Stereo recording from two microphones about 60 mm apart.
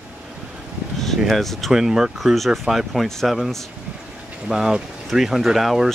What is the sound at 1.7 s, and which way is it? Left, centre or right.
Speech, centre.